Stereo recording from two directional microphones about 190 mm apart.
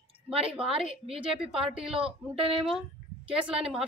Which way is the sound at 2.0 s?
30° right (ahead or behind).